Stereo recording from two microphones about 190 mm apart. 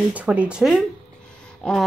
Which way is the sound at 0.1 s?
5° right (ahead or behind).